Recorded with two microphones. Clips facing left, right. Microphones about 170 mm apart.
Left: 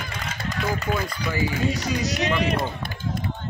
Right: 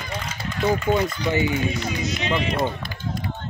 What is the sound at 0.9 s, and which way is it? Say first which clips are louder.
Speech: right 5 dB; 25° right (ahead or behind).